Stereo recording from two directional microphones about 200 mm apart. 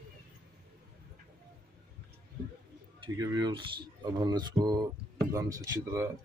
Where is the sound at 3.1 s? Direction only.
20° right (ahead or behind).